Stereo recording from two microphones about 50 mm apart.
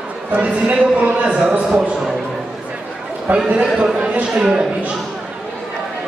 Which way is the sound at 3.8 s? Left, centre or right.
Centre.